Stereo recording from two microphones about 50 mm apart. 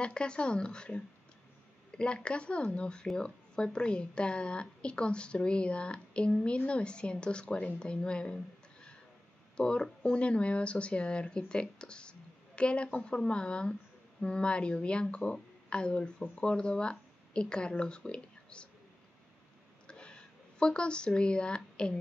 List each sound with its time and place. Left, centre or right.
0.0 s a woman's voice: centre
9.6 s a woman's voice: centre
19.9 s a sound: centre